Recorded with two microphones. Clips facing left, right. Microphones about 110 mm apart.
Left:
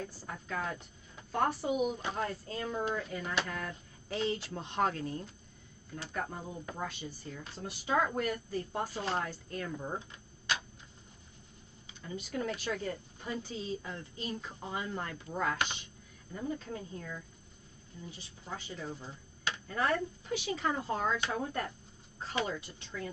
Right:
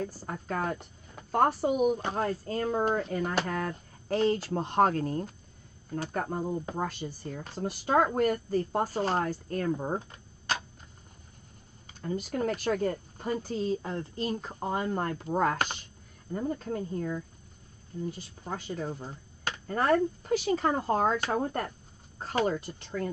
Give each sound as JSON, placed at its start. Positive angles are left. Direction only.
{"t": 0.0, "sound": "speech", "side_deg": -45}
{"t": 12.0, "sound": "speech", "side_deg": -45}